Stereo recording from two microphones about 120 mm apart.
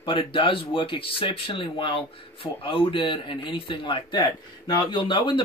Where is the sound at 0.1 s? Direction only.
45° left (ahead or behind).